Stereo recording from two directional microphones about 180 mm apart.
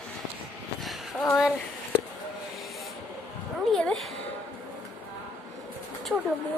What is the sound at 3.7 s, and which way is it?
Music, centre (ahead or behind).